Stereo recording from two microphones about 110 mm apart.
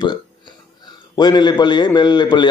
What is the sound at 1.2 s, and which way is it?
Speech, 45° left (ahead or behind).